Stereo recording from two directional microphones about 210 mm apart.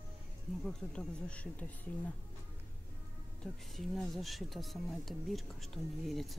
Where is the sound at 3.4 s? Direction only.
Centre (ahead or behind).